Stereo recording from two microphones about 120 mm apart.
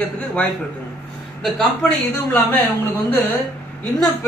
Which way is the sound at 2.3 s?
15° left (ahead or behind).